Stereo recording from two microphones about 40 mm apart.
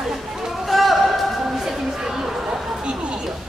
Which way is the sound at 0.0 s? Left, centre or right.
Centre.